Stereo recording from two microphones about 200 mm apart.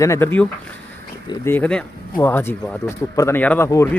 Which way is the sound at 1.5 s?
5° left (ahead or behind).